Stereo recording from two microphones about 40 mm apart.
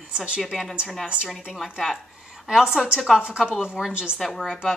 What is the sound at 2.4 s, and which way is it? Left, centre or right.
A woman's voice, centre.